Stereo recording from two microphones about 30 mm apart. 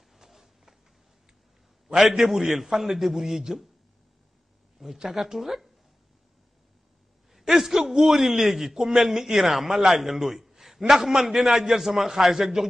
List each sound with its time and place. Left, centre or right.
0.1 s a sound: centre
2.0 s a man's voice: centre
4.8 s speech: right
5.1 s a man's voice: centre
7.3 s a man's voice: centre